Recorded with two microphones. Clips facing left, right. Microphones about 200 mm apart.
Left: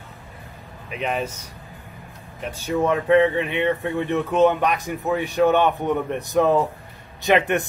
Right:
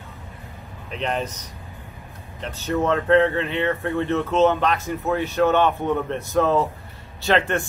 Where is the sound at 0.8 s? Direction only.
5° left (ahead or behind).